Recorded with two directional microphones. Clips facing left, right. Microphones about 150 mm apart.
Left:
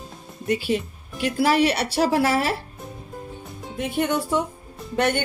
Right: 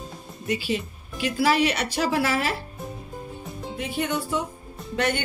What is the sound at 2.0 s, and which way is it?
Speech, 35° left (ahead or behind).